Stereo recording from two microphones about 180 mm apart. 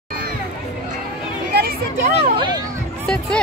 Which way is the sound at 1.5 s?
65° right (ahead or behind).